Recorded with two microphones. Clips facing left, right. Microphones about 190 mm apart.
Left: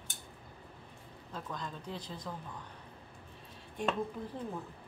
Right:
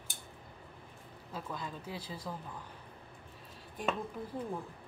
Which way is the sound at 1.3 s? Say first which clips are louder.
Right 1 dB; 5° right (ahead or behind).